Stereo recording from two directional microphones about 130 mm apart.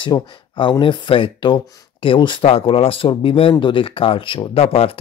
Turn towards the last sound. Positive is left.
turn(degrees=50)  # may be behind; listen again after turning